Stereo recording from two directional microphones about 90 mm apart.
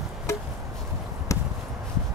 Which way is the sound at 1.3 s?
35° left (ahead or behind).